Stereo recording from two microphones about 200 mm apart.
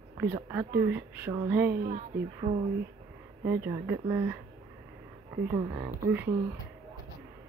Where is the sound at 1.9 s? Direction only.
35° right (ahead or behind).